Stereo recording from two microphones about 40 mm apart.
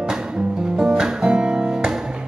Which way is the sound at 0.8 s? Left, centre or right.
Centre.